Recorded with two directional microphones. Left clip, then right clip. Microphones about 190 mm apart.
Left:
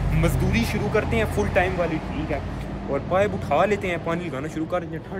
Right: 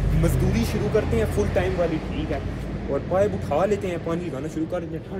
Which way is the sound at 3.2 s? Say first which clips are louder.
Left 1 dB; 10° right (ahead or behind).